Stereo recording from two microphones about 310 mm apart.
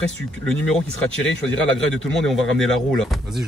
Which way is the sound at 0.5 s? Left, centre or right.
Centre.